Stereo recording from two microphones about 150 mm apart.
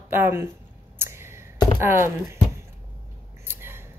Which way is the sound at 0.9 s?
15° right (ahead or behind).